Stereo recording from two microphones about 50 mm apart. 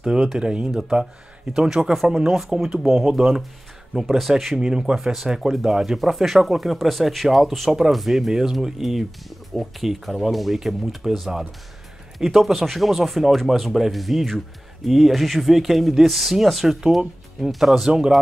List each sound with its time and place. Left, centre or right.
0.0 s speech: centre
0.7 s speech: centre
4.6 s speech: centre
4.9 s speech: centre